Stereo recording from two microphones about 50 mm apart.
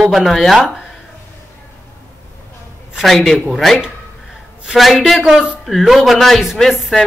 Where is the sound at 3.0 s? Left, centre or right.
Centre.